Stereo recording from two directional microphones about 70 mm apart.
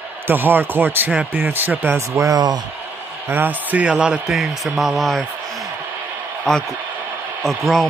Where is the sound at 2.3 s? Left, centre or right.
Right.